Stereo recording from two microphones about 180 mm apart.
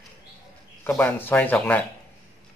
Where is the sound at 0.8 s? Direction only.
10° left (ahead or behind).